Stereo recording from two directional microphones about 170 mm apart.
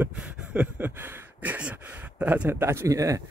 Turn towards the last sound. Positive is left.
turn(degrees=-20)  # may be behind; listen again after turning